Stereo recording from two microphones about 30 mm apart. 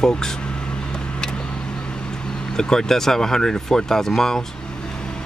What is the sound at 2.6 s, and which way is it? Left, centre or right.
Speech, centre.